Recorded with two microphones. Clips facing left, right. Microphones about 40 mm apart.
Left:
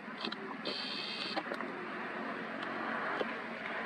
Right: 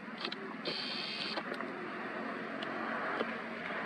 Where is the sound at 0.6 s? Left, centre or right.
Left.